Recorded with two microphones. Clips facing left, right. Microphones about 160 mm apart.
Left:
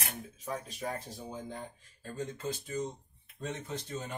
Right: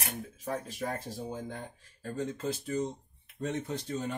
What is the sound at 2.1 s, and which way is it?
Speech, 65° right (ahead or behind).